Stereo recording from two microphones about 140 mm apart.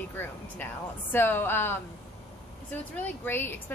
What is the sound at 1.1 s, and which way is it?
A woman's voice, 15° left (ahead or behind).